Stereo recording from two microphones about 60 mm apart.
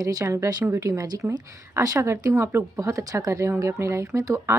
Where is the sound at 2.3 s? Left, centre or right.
Right.